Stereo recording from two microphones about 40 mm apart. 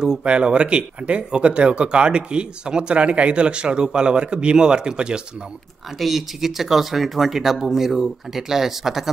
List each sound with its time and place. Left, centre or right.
0.2 s speech: right
5.9 s speech: centre